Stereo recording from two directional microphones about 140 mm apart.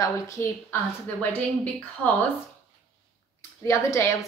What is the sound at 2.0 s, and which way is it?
Speech, 5° left (ahead or behind).